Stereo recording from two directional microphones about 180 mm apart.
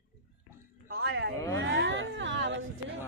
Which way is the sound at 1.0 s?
90° right.